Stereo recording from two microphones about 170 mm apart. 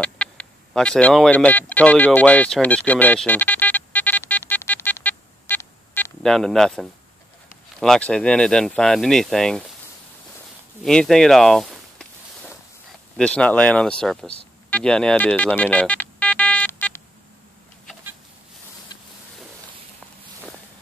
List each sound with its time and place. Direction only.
0.0 s a sound: 5° left (ahead or behind)
6.2 s speech: centre (ahead or behind)
10.8 s speech: 5° left (ahead or behind)
13.2 s speech: 5° left (ahead or behind)
14.7 s ringtone: 5° left (ahead or behind)
18.9 s vehicle: 25° left (ahead or behind)